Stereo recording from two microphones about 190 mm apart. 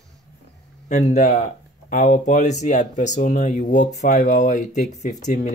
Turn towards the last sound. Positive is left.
turn(degrees=40)  # may be behind; listen again after turning